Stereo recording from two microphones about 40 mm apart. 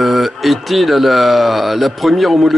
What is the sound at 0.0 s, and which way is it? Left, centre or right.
Speech, centre.